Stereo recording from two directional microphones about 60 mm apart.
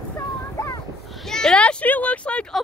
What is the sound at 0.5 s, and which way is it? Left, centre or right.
Boat, left.